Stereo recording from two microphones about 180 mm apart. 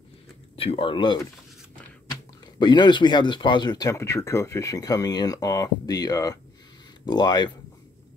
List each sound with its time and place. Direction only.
0.6 s speech: 30° left (ahead or behind)
2.6 s speech: 25° left (ahead or behind)